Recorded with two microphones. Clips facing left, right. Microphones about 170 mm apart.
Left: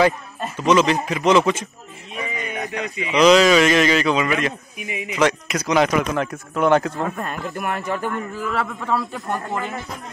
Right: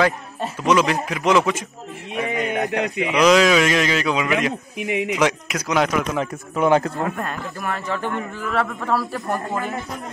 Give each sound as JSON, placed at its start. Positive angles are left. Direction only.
{"t": 0.6, "sound": "speech", "side_deg": -5}
{"t": 2.1, "sound": "a sound", "side_deg": -65}
{"t": 3.2, "sound": "speech", "side_deg": 0}
{"t": 4.7, "sound": "speech", "side_deg": -75}
{"t": 5.1, "sound": "speech", "side_deg": -5}
{"t": 7.5, "sound": "a man's voice", "side_deg": 15}
{"t": 8.4, "sound": "speech", "side_deg": 0}